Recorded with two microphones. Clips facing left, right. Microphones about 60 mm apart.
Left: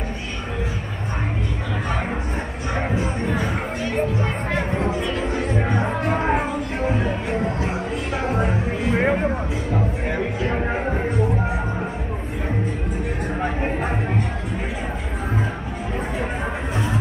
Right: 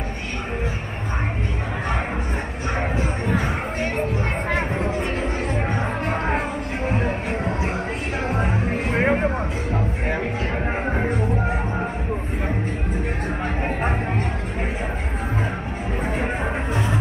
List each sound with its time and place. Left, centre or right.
3.0 s music: right
4.9 s a sound: right
6.9 s music: right
8.3 s music: centre
9.0 s vehicle: centre
10.7 s a sound: centre